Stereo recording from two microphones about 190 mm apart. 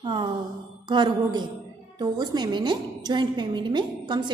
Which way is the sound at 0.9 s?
25° right (ahead or behind).